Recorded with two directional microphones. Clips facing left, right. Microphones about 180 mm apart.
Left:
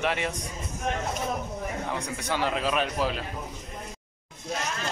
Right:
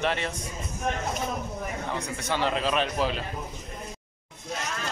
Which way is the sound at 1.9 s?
15° left (ahead or behind).